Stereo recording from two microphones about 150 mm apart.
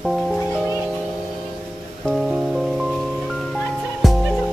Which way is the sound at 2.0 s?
Centre (ahead or behind).